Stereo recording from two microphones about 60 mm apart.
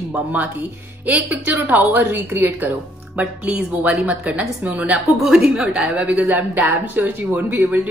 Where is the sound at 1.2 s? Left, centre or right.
Right.